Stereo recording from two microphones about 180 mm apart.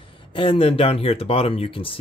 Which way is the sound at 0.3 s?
30° left (ahead or behind).